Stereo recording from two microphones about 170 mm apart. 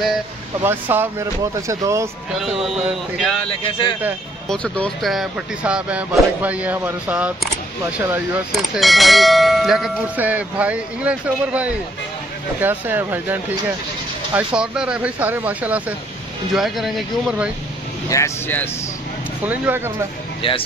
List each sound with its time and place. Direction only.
0.6 s speech: 10° right (ahead or behind)
2.3 s bell: centre (ahead or behind)
4.5 s speech: 5° left (ahead or behind); by 8.4 s 15° right (ahead or behind)
8.5 s bell: centre (ahead or behind)
12.5 s speech: 10° right (ahead or behind)
16.5 s bell: centre (ahead or behind)
18.1 s speech: 15° left (ahead or behind)
19.4 s speech: 10° right (ahead or behind)
20.4 s speech: 35° left (ahead or behind)